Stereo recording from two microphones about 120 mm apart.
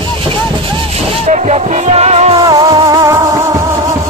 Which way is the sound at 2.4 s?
35° right (ahead or behind).